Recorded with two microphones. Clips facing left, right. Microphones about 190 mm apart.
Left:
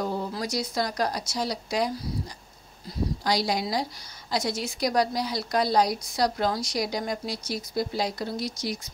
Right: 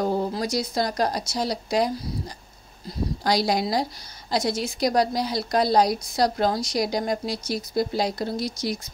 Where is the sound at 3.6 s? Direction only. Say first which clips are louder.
Right 4 dB; 35° right (ahead or behind).